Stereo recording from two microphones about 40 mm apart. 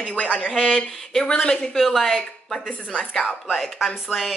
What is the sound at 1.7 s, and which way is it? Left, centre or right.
Speech, centre.